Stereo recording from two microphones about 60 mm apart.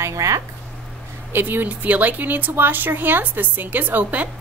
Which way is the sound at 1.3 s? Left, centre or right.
Right.